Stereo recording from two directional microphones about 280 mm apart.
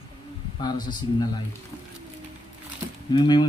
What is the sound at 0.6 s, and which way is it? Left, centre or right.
Speech, centre.